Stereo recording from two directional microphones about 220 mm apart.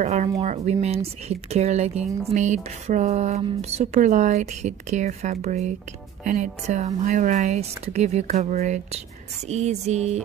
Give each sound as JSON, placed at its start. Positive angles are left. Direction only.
{"t": 0.0, "sound": "speech", "side_deg": -30}